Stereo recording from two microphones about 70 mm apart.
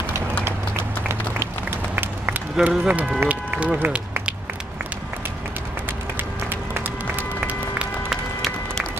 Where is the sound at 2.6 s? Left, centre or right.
Right.